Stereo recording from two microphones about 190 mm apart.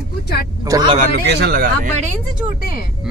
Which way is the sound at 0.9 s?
60° right (ahead or behind).